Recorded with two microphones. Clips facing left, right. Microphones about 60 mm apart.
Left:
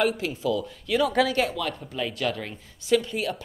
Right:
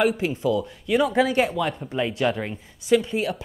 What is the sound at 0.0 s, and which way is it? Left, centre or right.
Speech, centre.